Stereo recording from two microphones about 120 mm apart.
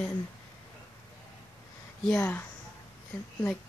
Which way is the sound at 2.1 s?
15° left (ahead or behind).